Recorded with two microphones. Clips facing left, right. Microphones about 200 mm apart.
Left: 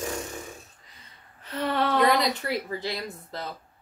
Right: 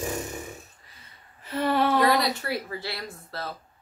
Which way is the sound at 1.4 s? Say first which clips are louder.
Right 3 dB; 5° right (ahead or behind).